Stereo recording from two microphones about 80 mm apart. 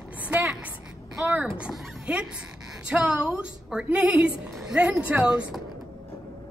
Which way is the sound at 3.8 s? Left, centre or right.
Centre.